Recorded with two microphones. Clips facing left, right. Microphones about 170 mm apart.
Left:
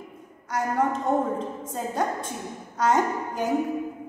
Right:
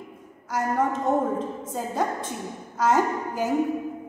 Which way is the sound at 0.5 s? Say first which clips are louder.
Even; 5° right (ahead or behind).